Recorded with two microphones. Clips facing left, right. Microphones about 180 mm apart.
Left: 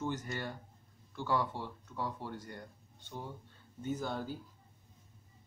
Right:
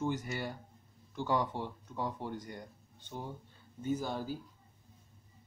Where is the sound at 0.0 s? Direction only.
10° right (ahead or behind).